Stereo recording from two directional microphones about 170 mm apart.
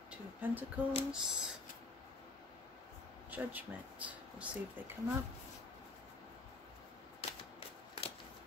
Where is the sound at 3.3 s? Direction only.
10° right (ahead or behind).